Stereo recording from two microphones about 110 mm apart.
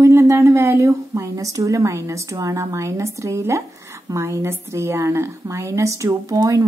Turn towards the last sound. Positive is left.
turn(degrees=-35)  # may be behind; listen again after turning